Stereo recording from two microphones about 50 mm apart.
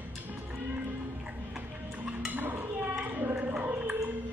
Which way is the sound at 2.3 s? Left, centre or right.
Right.